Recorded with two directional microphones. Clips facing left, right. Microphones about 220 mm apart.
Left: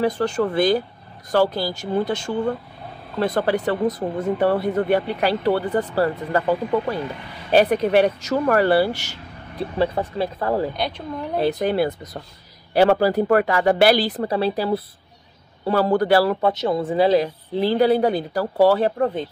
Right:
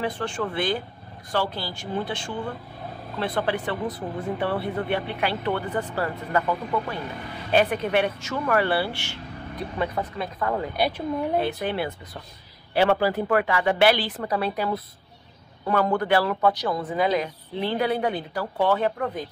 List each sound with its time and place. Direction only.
0.0 s speech: 40° left (ahead or behind)
10.8 s a woman's voice: 5° right (ahead or behind)
11.3 s speech: 40° left (ahead or behind)